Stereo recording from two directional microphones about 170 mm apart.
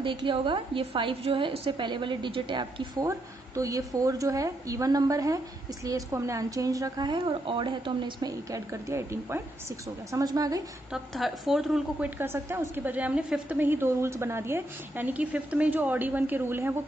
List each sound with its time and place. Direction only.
0.0 s a woman's voice: 30° right (ahead or behind)
10.9 s a woman's voice: centre (ahead or behind)
12.2 s a woman's voice: 15° right (ahead or behind)